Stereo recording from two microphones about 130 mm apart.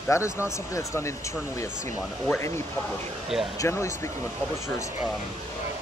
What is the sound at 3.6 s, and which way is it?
Speech, 20° left (ahead or behind).